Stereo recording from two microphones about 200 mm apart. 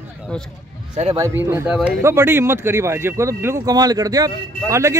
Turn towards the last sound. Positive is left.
turn(degrees=-15)  # may be behind; listen again after turning